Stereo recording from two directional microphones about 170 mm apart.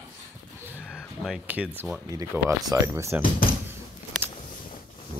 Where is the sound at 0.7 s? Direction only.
10° left (ahead or behind).